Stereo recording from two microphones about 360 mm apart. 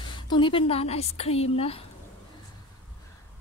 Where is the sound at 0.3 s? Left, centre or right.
Centre.